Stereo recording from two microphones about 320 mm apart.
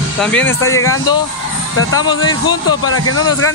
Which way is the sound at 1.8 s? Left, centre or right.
Left.